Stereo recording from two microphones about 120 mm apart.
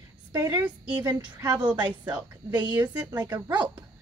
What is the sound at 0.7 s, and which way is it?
Speech, 10° right (ahead or behind).